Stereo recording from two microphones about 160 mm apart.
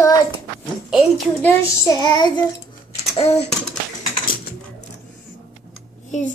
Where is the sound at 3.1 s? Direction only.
40° left (ahead or behind).